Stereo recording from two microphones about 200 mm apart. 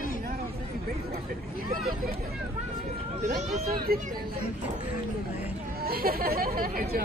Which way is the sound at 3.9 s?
50° right (ahead or behind).